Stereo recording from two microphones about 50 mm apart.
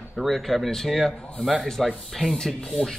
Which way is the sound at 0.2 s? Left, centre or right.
Centre.